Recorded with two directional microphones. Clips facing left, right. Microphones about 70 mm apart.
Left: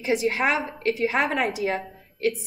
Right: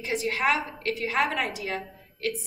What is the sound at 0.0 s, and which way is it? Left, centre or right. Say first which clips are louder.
A woman's voice: left 4 dB; centre.